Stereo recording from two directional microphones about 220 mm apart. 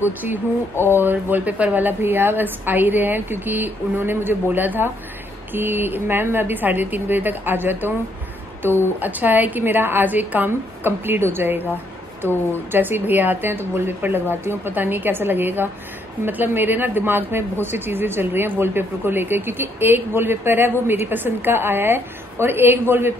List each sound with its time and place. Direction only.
0.0 s speech: 10° right (ahead or behind)
9.0 s speech: 10° right (ahead or behind)
12.7 s speech: 10° right (ahead or behind)